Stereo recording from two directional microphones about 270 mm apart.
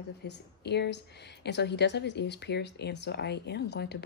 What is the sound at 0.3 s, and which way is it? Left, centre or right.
A woman's voice, left.